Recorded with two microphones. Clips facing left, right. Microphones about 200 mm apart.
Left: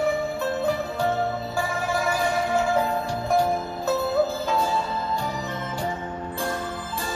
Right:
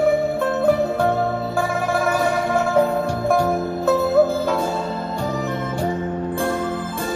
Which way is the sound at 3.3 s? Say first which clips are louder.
Right 3 dB; 60° right (ahead or behind).